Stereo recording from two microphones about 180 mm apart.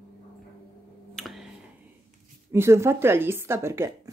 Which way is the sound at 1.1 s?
Centre (ahead or behind).